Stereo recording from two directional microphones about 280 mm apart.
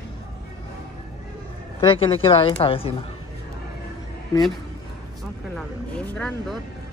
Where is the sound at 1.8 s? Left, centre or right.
Centre.